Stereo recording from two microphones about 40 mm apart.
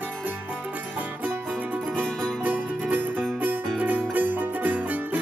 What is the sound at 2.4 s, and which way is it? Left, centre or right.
Music, right.